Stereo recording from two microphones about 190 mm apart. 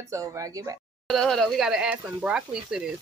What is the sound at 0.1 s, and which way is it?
Speech, 15° right (ahead or behind).